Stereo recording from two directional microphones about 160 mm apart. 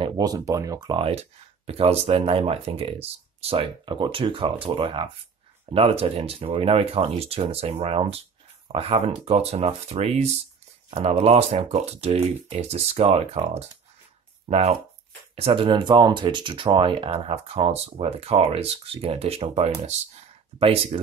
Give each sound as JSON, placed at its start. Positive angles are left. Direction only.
{"t": 0.0, "sound": "speech", "side_deg": -25}